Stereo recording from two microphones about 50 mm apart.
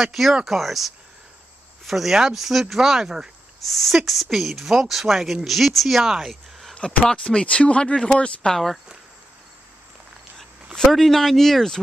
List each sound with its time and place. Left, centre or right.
0.0 s speech: centre
6.8 s speech: centre
10.9 s speech: centre